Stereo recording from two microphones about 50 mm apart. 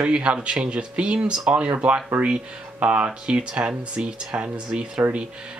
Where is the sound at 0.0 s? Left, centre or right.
Right.